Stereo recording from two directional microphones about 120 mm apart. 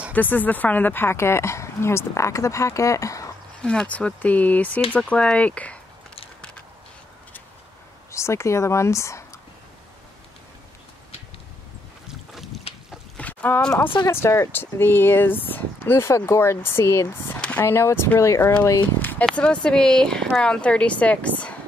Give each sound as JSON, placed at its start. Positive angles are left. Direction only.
{"t": 0.1, "sound": "speech", "side_deg": 15}
{"t": 3.6, "sound": "speech", "side_deg": 10}
{"t": 8.1, "sound": "speech", "side_deg": 25}
{"t": 12.1, "sound": "boat", "side_deg": 0}
{"t": 13.2, "sound": "speech", "side_deg": 15}
{"t": 14.0, "sound": "speech", "side_deg": 20}
{"t": 18.9, "sound": "a sound", "side_deg": 15}
{"t": 19.3, "sound": "speech", "side_deg": 10}